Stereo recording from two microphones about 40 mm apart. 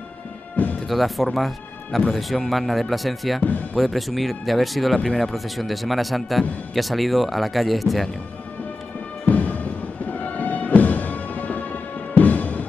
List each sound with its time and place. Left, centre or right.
0.8 s speech: centre
4.9 s speech: centre
5.2 s speech: centre
9.3 s music: left